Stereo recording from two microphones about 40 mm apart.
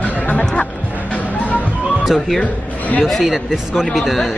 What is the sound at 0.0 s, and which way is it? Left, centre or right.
Music, left.